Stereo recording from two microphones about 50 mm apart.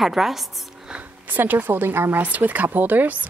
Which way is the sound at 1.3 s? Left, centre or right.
Right.